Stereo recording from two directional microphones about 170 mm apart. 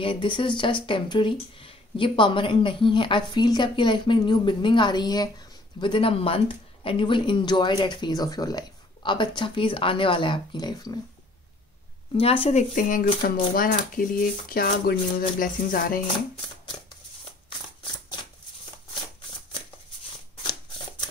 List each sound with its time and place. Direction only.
0.0 s speech: 30° left (ahead or behind)
12.2 s speech: 35° left (ahead or behind); by 16.0 s 55° left (ahead or behind)